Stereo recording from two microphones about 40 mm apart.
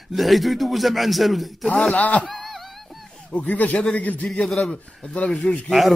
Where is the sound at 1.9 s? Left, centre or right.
Left.